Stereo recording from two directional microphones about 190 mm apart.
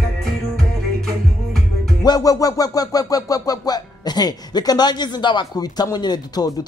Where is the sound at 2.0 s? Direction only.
20° left (ahead or behind).